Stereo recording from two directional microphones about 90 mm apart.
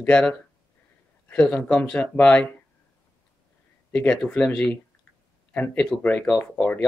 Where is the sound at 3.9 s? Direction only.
10° left (ahead or behind).